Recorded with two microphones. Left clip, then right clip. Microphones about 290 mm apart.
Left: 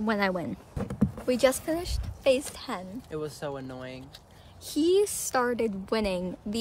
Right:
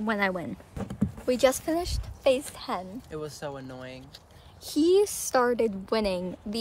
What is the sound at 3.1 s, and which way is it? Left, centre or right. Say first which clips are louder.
Speech: left 3 dB; centre.